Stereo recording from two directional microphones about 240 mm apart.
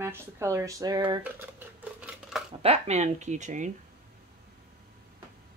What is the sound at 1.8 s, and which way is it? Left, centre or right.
Scissors, centre.